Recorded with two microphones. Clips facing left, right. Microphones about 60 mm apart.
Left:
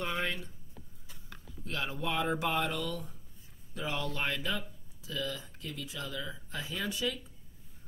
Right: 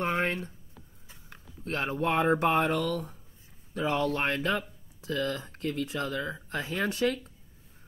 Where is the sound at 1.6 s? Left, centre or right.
Right.